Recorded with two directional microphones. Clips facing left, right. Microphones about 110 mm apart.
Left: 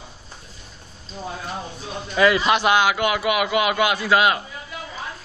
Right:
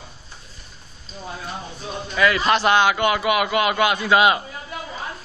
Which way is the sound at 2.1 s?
25° left (ahead or behind).